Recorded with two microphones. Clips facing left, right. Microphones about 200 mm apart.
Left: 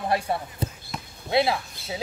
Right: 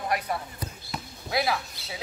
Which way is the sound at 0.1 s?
30° left (ahead or behind).